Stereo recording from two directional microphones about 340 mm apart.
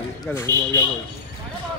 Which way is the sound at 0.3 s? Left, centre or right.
Centre.